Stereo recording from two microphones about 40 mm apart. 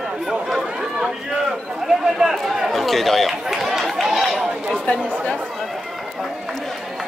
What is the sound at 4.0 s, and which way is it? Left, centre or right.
Run, centre.